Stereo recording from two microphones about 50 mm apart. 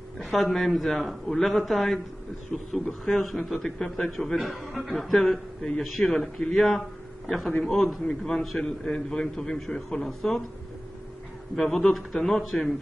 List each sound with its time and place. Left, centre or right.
0.2 s a man's voice: centre
2.9 s a man's voice: centre
11.6 s a man's voice: centre